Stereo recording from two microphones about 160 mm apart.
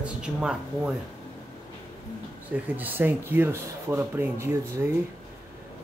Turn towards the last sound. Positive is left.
turn(degrees=-15)  # may be behind; listen again after turning